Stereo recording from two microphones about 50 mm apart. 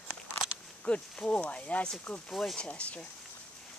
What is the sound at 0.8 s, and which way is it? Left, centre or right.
Speech, left.